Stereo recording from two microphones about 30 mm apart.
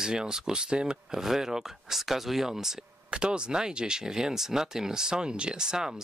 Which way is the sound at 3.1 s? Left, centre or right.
Right.